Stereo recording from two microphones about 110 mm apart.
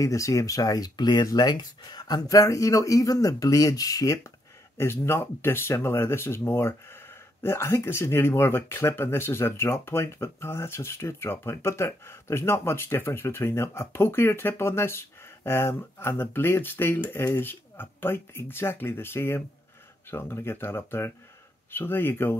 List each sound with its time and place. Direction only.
0.0 s speech: 30° left (ahead or behind)